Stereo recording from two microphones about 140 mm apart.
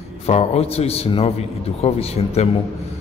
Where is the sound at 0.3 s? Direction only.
50° left (ahead or behind).